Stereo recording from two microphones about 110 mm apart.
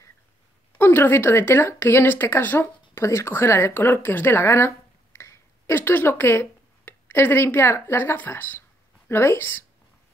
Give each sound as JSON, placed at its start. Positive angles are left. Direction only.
{"t": 0.7, "sound": "speech", "side_deg": 20}